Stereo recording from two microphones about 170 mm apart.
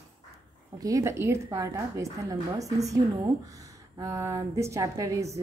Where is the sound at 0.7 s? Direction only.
20° right (ahead or behind).